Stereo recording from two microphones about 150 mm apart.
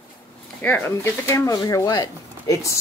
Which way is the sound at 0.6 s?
10° left (ahead or behind).